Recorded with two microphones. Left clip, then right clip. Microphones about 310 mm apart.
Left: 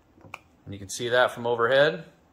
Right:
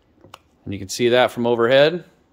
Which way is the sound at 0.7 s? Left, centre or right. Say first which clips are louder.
Right 8 dB; right.